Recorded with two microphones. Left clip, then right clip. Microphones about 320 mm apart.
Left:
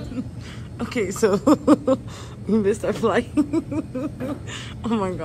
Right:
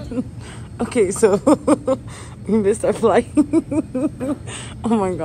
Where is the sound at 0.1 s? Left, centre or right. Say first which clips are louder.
Right 6 dB; centre.